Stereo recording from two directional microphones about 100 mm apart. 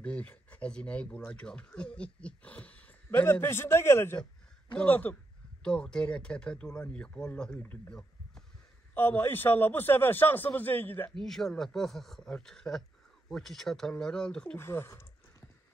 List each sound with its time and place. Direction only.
0.0 s a man's voice: 15° left (ahead or behind)
8.9 s a man's voice: 20° left (ahead or behind)
11.1 s speech: 5° left (ahead or behind)
14.6 s a man's voice: 25° left (ahead or behind)